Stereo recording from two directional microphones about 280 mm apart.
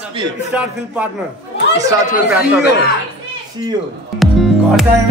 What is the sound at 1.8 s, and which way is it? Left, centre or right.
Speech, centre.